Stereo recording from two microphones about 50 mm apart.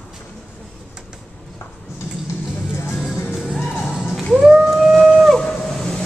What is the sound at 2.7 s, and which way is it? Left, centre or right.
Music, left.